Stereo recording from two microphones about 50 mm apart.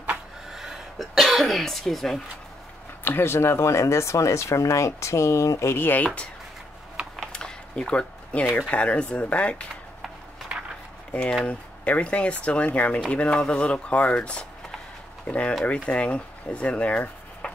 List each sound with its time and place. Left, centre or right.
0.5 s speech: centre
3.0 s speech: left
3.3 s speech: left
5.8 s speech: left
7.3 s a sound: centre
8.6 s speech: left
11.4 s speech: left